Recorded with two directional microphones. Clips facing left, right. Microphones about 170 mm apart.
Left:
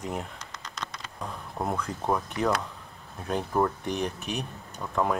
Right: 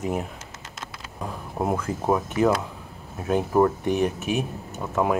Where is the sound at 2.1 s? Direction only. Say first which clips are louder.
Right 6 dB; 5° right (ahead or behind).